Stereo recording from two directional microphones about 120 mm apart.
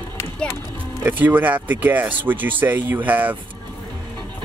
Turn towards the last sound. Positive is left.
turn(degrees=-15)  # may be behind; listen again after turning